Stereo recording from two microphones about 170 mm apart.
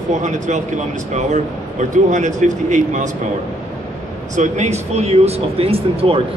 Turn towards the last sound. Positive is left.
turn(degrees=-35)  # may be behind; listen again after turning